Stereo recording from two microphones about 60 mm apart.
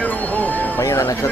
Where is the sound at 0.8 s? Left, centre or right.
Left.